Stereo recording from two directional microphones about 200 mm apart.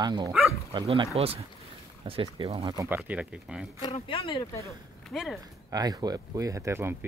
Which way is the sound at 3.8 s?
25° left (ahead or behind).